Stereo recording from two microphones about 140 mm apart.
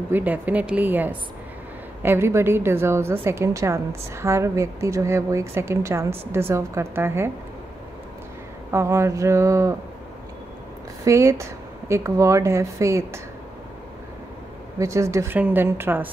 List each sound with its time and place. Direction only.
0.1 s a woman's voice: 10° right (ahead or behind)
8.7 s a woman's voice: 20° right (ahead or behind)
11.1 s a woman's voice: 20° right (ahead or behind)
14.8 s a woman's voice: 20° right (ahead or behind)